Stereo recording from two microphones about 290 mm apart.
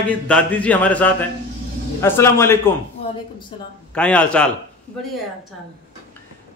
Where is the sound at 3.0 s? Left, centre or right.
Centre.